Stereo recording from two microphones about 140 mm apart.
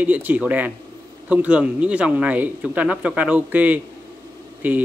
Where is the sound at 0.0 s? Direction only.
10° right (ahead or behind).